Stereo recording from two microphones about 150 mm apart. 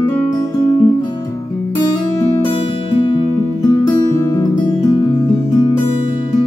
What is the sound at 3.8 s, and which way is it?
Music, 15° left (ahead or behind).